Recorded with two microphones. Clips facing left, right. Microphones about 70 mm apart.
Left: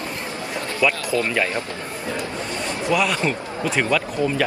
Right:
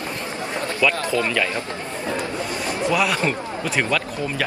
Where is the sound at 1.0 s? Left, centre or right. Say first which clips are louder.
Even; right.